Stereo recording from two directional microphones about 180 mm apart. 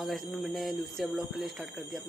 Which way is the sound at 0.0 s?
Centre (ahead or behind).